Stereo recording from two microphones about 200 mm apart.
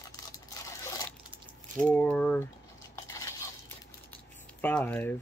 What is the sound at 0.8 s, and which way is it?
Coin, 20° left (ahead or behind).